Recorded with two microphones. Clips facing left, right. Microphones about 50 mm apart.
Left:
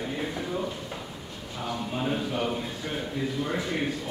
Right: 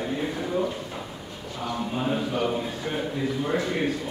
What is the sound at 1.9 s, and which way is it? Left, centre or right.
A man's voice, centre.